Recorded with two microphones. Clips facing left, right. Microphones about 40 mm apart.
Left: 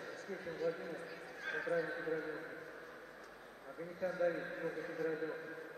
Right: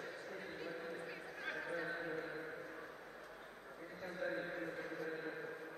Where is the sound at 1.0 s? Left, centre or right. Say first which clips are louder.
Even; centre.